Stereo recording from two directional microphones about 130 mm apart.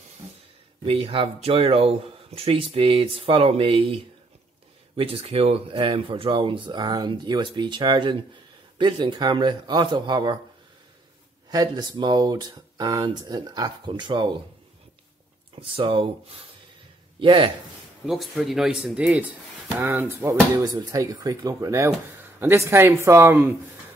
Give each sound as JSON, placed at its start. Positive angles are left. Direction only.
{"t": 0.8, "sound": "speech", "side_deg": -45}
{"t": 11.5, "sound": "speech", "side_deg": -30}
{"t": 15.5, "sound": "a man's voice", "side_deg": -40}
{"t": 18.0, "sound": "speech", "side_deg": 0}
{"t": 20.6, "sound": "speech", "side_deg": -30}